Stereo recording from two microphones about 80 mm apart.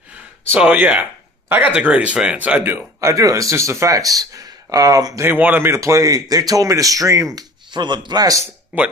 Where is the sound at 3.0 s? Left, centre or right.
Right.